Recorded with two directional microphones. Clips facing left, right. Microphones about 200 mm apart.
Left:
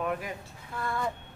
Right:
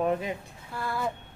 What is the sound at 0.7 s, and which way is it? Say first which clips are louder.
Speech: right 1 dB; 5° right (ahead or behind).